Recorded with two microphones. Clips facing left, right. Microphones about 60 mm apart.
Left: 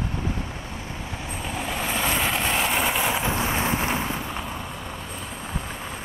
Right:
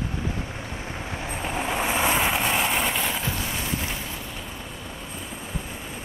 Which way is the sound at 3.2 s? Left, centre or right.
Left.